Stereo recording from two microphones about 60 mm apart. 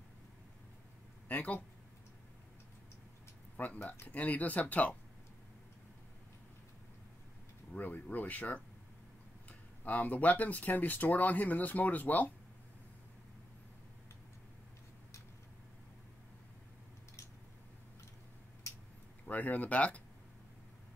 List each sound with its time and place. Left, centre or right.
1.3 s speech: left
3.5 s speech: left
7.7 s speech: left
19.2 s speech: left